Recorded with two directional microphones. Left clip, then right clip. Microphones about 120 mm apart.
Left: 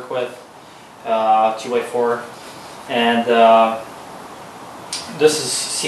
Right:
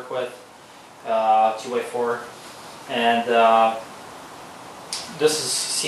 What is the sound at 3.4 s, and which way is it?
Speech, 10° right (ahead or behind).